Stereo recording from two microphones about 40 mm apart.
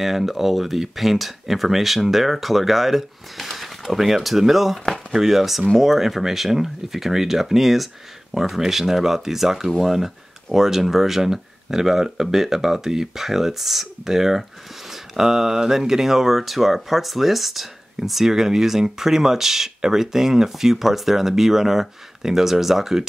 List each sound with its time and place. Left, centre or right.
0.0 s speech: centre